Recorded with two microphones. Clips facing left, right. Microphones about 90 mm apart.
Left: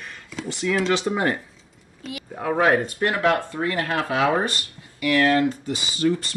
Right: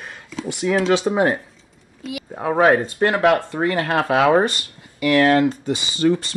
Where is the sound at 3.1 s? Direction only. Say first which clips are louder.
Right 4 dB; 75° right (ahead or behind).